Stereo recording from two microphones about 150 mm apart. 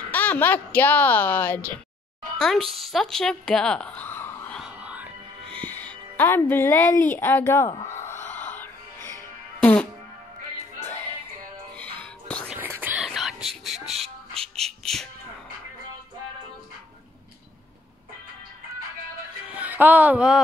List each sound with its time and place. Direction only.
0.1 s a woman's voice: 10° left (ahead or behind)
4.6 s a sound: 5° right (ahead or behind)
5.5 s speech: 10° left (ahead or behind)
7.9 s music: 15° left (ahead or behind)
11.8 s music: 10° left (ahead or behind)
12.4 s whispering: 15° right (ahead or behind)
13.0 s whispering: centre (ahead or behind)
14.3 s music: 5° left (ahead or behind)
19.5 s speech: 10° right (ahead or behind)